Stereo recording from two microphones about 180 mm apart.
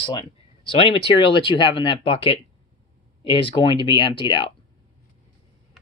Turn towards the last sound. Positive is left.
turn(degrees=25)  # may be behind; listen again after turning